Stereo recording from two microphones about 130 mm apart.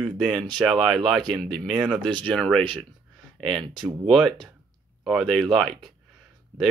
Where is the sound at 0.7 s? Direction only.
Centre (ahead or behind).